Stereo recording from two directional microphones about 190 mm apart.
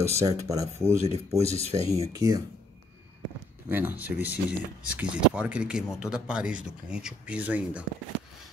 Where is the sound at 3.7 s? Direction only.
10° right (ahead or behind).